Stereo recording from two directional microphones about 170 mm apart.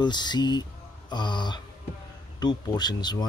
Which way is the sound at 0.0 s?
25° left (ahead or behind).